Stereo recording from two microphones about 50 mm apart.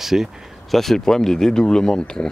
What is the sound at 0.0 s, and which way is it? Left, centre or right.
Speech, centre.